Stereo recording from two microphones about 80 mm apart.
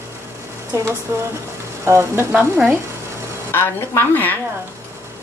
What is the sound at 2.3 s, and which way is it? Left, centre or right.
Speech, centre.